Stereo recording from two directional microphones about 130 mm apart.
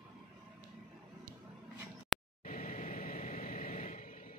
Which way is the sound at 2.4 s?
90° left.